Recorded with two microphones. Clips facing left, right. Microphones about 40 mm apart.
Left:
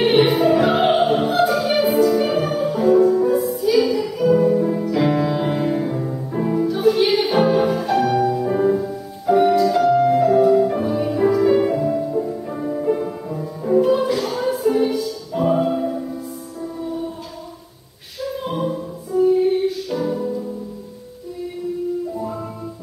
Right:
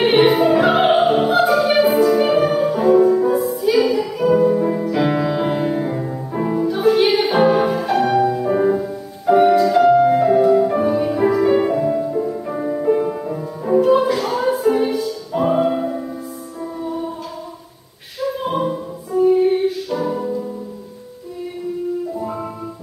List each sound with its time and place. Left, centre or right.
0.0 s music: centre
18.2 s music: centre